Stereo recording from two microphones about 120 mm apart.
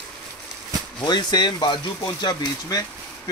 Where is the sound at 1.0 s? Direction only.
35° left (ahead or behind).